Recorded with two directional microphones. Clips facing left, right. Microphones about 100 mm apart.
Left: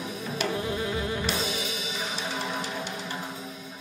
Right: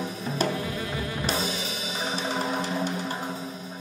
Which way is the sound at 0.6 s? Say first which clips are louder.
Left 2 dB; 25° left (ahead or behind).